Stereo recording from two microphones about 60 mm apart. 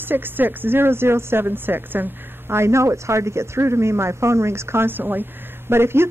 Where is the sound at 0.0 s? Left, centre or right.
Right.